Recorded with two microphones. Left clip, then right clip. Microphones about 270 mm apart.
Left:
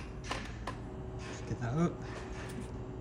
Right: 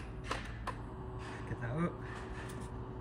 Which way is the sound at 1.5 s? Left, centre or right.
Centre.